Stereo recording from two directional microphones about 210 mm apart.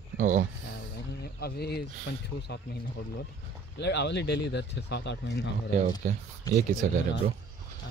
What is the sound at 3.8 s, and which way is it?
Speech, 55° left (ahead or behind).